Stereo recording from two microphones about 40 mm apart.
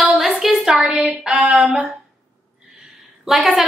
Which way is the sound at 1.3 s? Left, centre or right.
Right.